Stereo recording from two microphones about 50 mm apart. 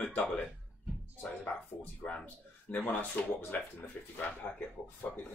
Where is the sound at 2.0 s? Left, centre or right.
Left.